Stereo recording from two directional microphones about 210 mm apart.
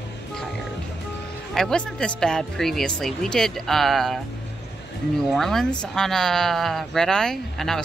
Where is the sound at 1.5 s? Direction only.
5° left (ahead or behind).